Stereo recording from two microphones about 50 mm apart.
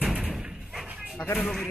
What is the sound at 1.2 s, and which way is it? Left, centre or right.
Speech, left.